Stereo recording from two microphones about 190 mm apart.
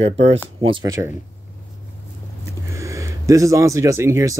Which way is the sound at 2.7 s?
15° right (ahead or behind).